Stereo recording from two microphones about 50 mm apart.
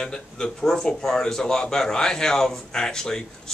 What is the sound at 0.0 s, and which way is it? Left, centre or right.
Speech, centre.